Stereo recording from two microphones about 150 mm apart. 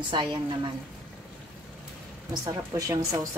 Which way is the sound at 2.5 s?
20° right (ahead or behind).